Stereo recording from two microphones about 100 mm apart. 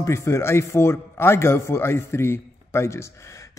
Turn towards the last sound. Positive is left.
turn(degrees=30)  # may be behind; listen again after turning